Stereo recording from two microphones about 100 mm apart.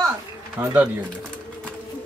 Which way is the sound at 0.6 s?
20° right (ahead or behind).